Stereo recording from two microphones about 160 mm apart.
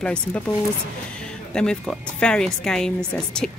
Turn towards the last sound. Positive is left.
turn(degrees=5)  # may be behind; listen again after turning